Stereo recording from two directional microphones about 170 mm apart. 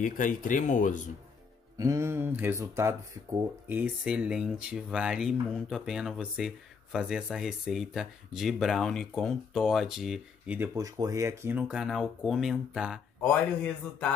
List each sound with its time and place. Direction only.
0.0 s speech: 50° left (ahead or behind)
1.8 s speech: 15° right (ahead or behind)
10.7 s speech: 20° right (ahead or behind); by 13.0 s centre (ahead or behind)